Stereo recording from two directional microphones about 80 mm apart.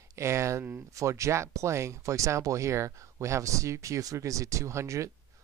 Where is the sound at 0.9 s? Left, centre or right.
Right.